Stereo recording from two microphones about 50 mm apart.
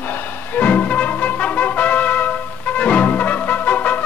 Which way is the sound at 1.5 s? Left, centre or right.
Left.